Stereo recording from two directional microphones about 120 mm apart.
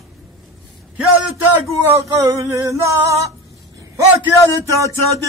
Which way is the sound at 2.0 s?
25° right (ahead or behind).